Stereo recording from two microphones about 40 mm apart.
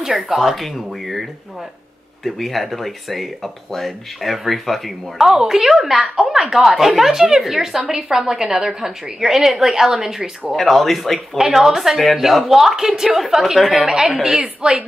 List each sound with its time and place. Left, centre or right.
0.0 s speech: centre
2.2 s a woman's voice: centre
10.5 s speech: centre
11.3 s a woman's voice: centre
13.8 s a woman's voice: centre